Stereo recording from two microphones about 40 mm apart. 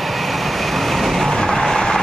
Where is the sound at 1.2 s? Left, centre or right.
Centre.